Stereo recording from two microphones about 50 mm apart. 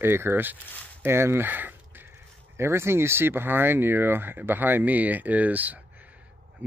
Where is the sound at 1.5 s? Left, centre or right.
Right.